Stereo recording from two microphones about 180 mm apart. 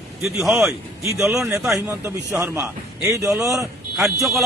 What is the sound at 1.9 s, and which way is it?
A man's voice, 15° right (ahead or behind).